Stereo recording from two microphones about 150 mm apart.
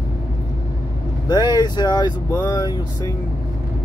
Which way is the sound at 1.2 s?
30° left (ahead or behind).